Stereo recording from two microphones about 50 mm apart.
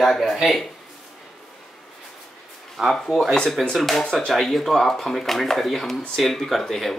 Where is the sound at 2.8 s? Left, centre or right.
Centre.